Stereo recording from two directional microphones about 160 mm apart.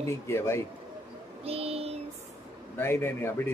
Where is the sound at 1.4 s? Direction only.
40° right (ahead or behind).